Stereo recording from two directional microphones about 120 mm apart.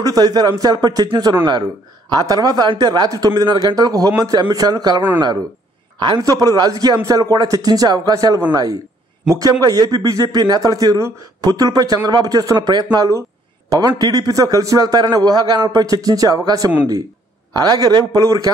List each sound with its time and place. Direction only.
0.0 s a man's voice: 30° right (ahead or behind)